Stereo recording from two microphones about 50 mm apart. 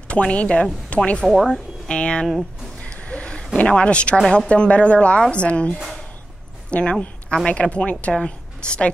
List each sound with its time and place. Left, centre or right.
0.1 s speech: left
1.2 s speech: centre
1.9 s speech: centre
2.8 s a sound: left
3.5 s a woman's voice: left